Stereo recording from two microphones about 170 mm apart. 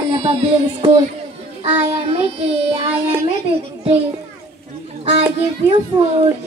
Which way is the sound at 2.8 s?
35° right (ahead or behind).